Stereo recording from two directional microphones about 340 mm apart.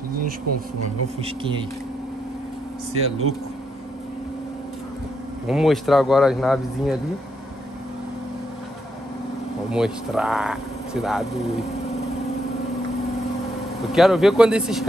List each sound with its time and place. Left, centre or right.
1.2 s speech: centre
2.9 s speech: right
5.5 s speech: centre
9.7 s speech: centre
13.9 s speech: centre